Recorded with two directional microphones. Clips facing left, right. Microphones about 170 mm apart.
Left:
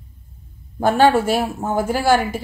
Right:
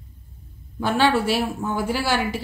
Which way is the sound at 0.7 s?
45° left (ahead or behind).